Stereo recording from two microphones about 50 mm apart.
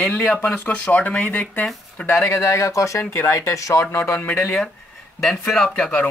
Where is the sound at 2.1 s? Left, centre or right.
Left.